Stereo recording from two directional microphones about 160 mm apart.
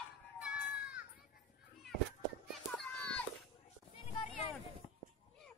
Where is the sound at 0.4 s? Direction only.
5° right (ahead or behind).